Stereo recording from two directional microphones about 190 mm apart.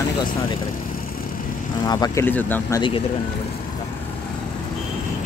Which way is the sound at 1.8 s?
20° left (ahead or behind).